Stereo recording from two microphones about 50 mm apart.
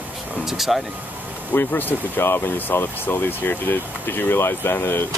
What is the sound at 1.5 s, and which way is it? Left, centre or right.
Speech, left.